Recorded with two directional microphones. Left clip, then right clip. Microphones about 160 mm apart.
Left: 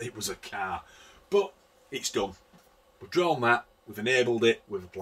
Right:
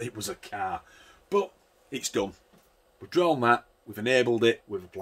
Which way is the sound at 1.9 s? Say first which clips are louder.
Right 1 dB; 70° right (ahead or behind).